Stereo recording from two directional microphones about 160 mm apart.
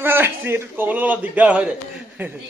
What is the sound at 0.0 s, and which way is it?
Speech, 15° right (ahead or behind).